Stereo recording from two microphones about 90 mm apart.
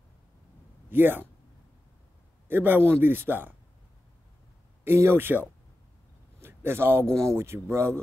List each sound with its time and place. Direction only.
0.8 s speech: 25° right (ahead or behind)
2.4 s a man's voice: 20° right (ahead or behind)
4.8 s a man's voice: 25° right (ahead or behind)